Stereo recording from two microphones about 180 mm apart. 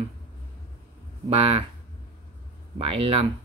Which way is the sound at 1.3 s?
35° right (ahead or behind).